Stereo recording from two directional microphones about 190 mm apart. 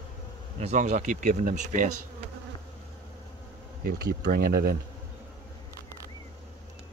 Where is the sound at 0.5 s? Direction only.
35° right (ahead or behind).